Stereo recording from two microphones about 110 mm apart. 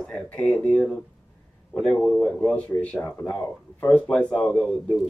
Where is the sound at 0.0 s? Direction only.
10° left (ahead or behind).